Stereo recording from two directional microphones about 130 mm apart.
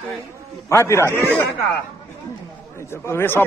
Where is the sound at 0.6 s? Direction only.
20° left (ahead or behind).